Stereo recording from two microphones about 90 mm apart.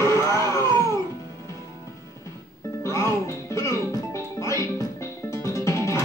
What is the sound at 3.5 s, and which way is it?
Music, 35° left (ahead or behind).